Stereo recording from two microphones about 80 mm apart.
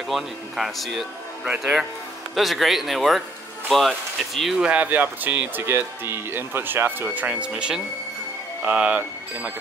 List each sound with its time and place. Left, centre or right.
0.1 s speech: centre
4.6 s speech: centre